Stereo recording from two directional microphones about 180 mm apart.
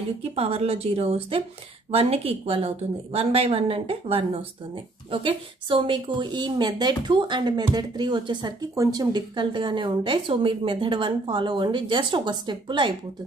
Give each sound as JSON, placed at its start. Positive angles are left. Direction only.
{"t": 0.2, "sound": "a woman's voice", "side_deg": -35}